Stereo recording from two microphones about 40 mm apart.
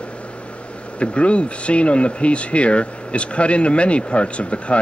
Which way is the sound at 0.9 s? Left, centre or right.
Left.